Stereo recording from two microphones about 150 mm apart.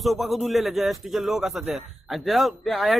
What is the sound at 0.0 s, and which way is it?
Speech, centre (ahead or behind).